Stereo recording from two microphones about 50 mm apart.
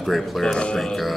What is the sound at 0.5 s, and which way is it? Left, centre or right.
Speech, centre.